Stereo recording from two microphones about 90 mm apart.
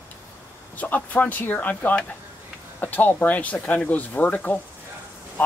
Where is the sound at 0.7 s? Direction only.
20° left (ahead or behind).